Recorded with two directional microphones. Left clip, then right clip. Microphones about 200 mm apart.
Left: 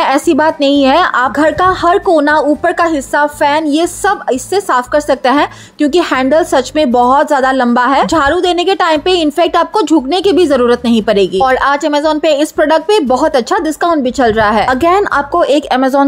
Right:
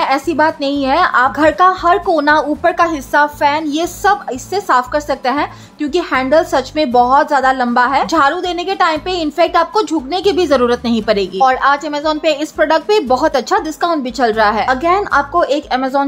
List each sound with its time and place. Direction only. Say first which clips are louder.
0.0 s a woman's voice: left 3 dB; 30° left (ahead or behind)
14.7 s speech: left 3 dB; 35° left (ahead or behind)